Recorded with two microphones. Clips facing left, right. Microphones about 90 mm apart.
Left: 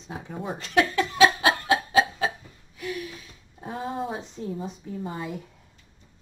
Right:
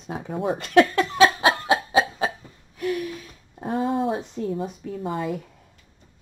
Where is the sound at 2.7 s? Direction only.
50° right (ahead or behind).